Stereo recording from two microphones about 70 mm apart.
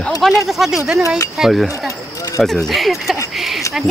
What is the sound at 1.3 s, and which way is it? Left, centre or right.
Speech, centre.